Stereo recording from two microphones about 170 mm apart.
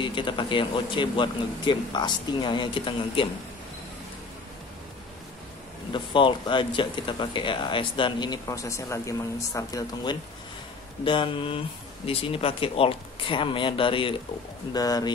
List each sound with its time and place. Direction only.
0.0 s speech: 30° left (ahead or behind)
5.9 s speech: 30° left (ahead or behind)